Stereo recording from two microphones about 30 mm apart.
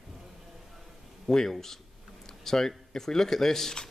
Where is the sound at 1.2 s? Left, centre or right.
Centre.